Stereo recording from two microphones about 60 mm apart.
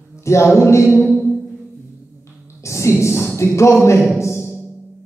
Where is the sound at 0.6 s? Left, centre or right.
Left.